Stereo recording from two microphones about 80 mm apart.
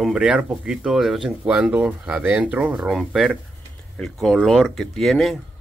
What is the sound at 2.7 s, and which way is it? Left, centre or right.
Speech, centre.